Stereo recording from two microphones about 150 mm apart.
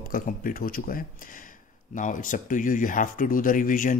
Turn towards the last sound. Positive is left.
turn(degrees=60)  # may be behind; listen again after turning